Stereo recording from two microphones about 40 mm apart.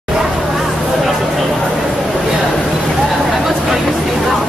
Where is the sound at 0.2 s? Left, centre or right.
Centre.